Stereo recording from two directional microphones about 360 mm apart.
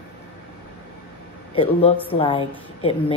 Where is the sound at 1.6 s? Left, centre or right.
Centre.